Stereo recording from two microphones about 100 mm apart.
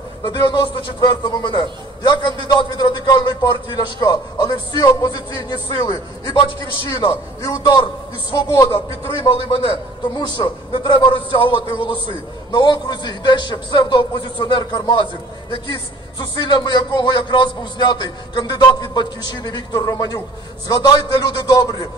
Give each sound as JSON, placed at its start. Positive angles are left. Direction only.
{"t": 0.2, "sound": "a man's voice", "side_deg": 50}
{"t": 9.3, "sound": "a man's voice", "side_deg": 65}
{"t": 10.1, "sound": "a man's voice", "side_deg": 45}
{"t": 16.2, "sound": "a man's voice", "side_deg": 50}